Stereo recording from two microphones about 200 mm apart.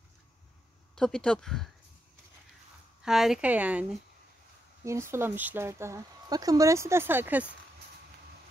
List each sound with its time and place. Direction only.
0.9 s speech: 5° left (ahead or behind)
3.1 s speech: centre (ahead or behind)
4.8 s speech: 15° right (ahead or behind)